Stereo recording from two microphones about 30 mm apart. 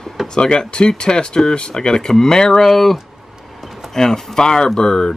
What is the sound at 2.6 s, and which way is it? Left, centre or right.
Speech, centre.